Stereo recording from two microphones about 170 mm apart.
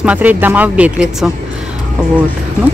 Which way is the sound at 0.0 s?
10° right (ahead or behind).